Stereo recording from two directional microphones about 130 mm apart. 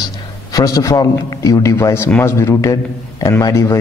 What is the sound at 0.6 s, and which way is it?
A man's voice, 25° left (ahead or behind).